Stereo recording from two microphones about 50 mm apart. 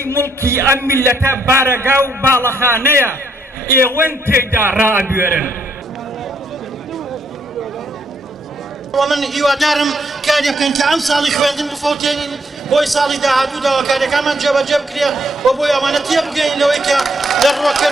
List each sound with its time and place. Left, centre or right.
0.1 s music: right
1.6 s a man's voice: right
8.9 s a man's voice: centre